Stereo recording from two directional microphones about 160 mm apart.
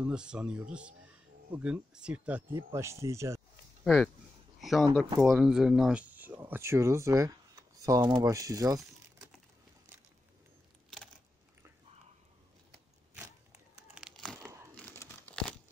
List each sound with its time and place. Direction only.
0.0 s speech: 5° right (ahead or behind)
3.8 s speech: 5° left (ahead or behind)
4.6 s a sound: centre (ahead or behind)
5.2 s speech: 5° right (ahead or behind); by 8.8 s 20° right (ahead or behind)
13.9 s crumpling: centre (ahead or behind)